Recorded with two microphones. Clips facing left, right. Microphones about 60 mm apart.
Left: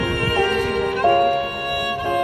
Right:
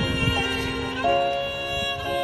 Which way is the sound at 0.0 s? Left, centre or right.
Left.